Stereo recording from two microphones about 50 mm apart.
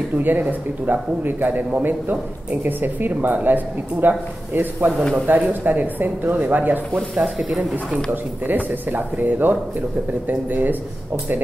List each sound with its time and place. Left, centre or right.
0.2 s a man's voice: right
7.2 s speech: centre
8.1 s a man's voice: right